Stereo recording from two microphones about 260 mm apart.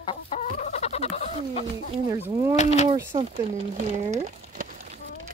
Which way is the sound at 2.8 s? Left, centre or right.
Centre.